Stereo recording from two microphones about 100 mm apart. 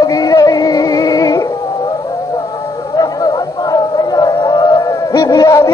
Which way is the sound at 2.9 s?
40° left (ahead or behind).